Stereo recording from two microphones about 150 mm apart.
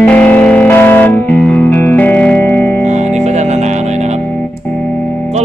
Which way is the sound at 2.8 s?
50° right (ahead or behind).